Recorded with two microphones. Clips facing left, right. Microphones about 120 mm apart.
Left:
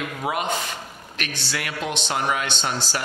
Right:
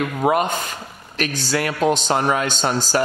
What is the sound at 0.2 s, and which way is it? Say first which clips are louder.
A man's voice: right 6 dB; 45° right (ahead or behind).